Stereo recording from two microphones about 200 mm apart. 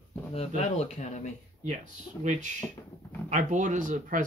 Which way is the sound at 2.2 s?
40° right (ahead or behind).